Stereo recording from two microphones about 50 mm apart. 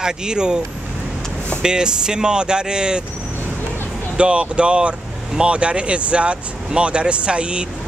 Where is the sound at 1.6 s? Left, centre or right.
Centre.